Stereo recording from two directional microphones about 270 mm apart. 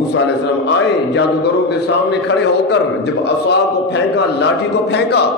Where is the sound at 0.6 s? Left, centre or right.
Left.